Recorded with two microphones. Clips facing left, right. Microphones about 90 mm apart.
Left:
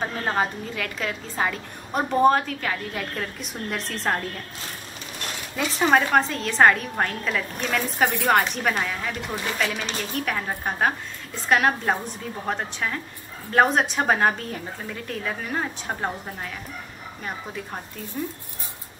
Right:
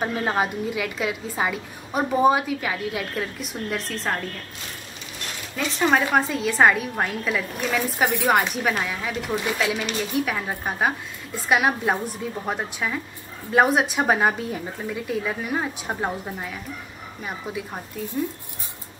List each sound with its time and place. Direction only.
0.0 s a woman's voice: 10° right (ahead or behind)
5.6 s a woman's voice: centre (ahead or behind)